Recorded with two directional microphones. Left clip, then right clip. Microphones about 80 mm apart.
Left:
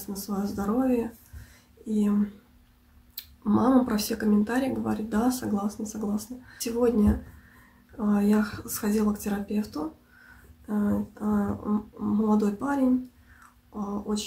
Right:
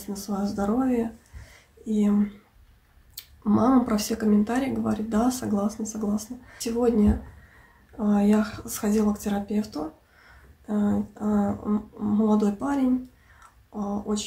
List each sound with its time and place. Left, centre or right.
0.1 s speech: centre
3.2 s speech: right
6.8 s a sound: centre
8.0 s speech: centre
10.9 s a sound: centre
11.3 s speech: centre